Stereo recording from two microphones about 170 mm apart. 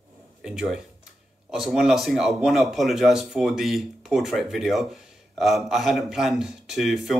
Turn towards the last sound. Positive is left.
turn(degrees=0)  # may be behind; listen again after turning